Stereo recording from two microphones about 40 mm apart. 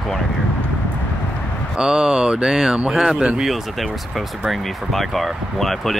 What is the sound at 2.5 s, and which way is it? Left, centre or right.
Speech, centre.